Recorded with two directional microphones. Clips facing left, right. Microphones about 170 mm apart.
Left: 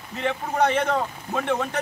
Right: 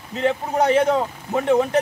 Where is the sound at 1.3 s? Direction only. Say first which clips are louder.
Right 7 dB; 15° right (ahead or behind).